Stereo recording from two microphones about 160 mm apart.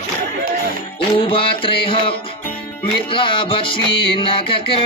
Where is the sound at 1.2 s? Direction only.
35° left (ahead or behind).